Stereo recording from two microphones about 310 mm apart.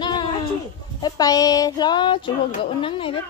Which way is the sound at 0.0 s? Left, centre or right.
Centre.